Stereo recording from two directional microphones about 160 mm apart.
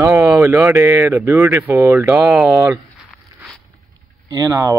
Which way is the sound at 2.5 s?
20° right (ahead or behind).